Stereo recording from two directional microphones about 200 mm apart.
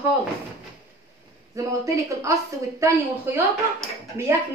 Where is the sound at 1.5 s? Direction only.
15° right (ahead or behind).